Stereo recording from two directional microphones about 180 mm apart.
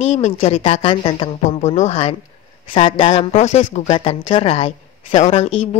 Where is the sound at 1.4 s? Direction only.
40° left (ahead or behind).